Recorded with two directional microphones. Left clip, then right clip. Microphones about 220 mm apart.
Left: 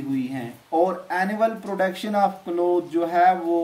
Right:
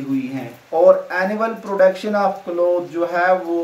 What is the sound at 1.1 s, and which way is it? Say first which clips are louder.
Speech: right 2 dB; 35° left (ahead or behind).